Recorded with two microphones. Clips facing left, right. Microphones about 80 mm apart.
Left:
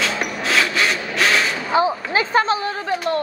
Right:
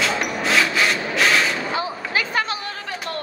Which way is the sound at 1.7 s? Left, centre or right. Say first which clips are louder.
Left 6 dB; left.